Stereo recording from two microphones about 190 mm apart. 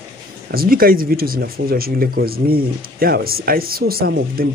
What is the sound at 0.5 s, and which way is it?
Speech, 50° right (ahead or behind).